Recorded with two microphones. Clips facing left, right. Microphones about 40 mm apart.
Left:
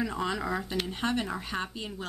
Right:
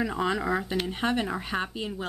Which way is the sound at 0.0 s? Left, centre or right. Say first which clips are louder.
Right 4 dB; centre.